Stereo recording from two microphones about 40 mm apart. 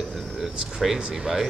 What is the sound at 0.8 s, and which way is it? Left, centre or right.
Speech, centre.